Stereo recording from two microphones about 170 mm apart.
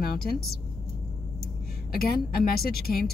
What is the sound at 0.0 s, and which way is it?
Speech, 65° left (ahead or behind).